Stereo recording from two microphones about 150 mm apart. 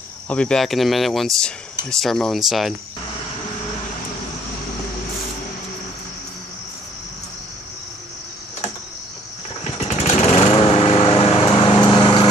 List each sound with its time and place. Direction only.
0.3 s speech: 5° left (ahead or behind)
9.6 s lawn mower: 45° left (ahead or behind)